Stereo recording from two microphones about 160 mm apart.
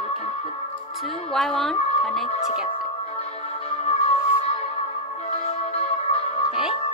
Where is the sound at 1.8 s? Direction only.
40° left (ahead or behind).